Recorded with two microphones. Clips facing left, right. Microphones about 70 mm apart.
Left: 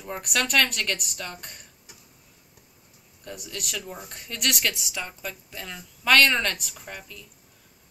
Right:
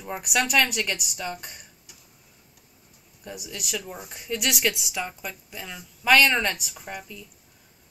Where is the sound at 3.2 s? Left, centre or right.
Centre.